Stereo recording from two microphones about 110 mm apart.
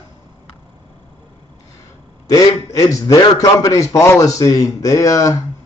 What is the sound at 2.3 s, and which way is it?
A man's voice, 30° left (ahead or behind).